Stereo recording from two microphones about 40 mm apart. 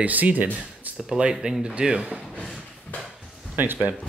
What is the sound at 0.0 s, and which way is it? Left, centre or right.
Speech, right.